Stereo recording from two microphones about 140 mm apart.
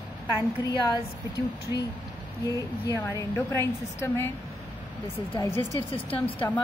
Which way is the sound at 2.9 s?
20° left (ahead or behind).